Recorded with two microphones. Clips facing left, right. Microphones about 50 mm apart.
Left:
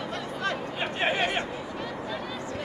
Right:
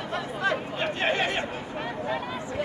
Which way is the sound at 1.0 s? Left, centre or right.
Centre.